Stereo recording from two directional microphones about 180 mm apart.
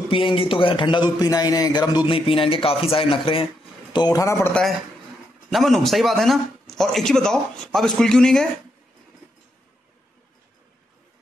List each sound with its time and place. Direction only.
0.1 s a man's voice: 30° left (ahead or behind)
5.5 s a man's voice: centre (ahead or behind)